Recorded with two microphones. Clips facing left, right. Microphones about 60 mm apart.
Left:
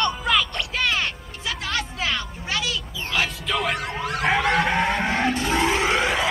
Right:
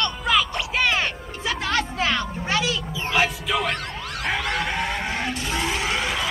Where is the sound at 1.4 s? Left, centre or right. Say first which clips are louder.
Right 3 dB; right.